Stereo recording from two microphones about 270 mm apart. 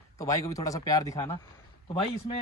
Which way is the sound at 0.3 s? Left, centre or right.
Centre.